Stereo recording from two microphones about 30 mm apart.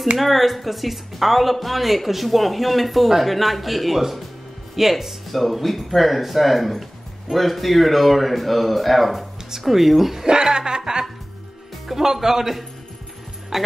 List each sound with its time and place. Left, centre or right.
0.2 s speech: centre
10.2 s speech: right
11.9 s speech: centre